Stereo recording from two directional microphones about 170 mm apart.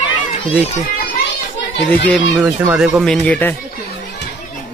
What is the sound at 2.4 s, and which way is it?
Speech, 10° right (ahead or behind).